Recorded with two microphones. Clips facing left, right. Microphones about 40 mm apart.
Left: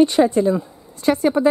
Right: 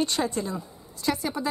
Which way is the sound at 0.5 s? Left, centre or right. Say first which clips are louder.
Left 11 dB; left.